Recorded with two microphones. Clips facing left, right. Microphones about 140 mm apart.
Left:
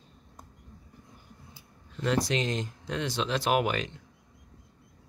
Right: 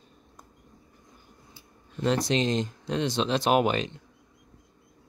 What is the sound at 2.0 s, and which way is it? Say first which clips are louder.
Speech: right 3 dB; 25° right (ahead or behind).